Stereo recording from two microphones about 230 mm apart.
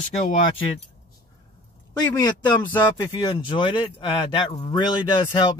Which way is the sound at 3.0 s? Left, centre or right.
Centre.